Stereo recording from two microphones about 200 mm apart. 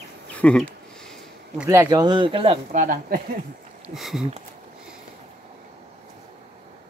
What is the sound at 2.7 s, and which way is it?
Speech, 40° right (ahead or behind).